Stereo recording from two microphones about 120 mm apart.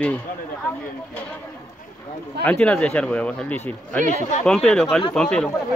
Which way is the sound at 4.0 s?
90° right.